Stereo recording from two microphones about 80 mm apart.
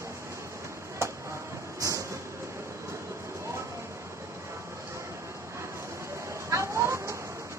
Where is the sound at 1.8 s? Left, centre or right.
Right.